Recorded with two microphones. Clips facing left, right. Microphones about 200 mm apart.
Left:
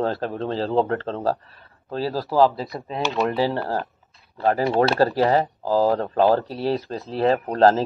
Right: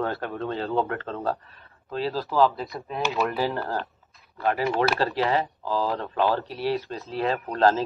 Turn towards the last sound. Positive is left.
turn(degrees=35)  # may be behind; listen again after turning